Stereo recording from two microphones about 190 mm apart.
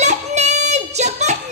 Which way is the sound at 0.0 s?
35° right (ahead or behind).